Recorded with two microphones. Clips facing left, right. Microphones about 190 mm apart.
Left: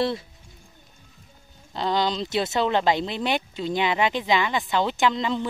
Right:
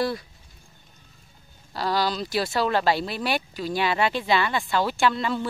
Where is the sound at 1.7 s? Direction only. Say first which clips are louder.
Left 1 dB; 20° left (ahead or behind).